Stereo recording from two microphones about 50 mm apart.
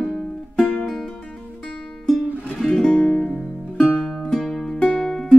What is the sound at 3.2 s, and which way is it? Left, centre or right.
Music, left.